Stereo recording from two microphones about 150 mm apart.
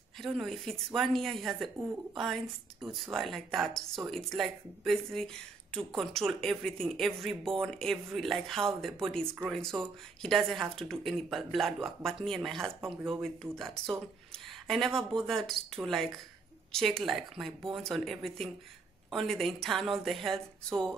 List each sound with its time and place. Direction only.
0.2 s a woman's voice: centre (ahead or behind)